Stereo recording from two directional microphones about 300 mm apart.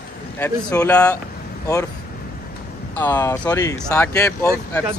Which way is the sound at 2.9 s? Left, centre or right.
Centre.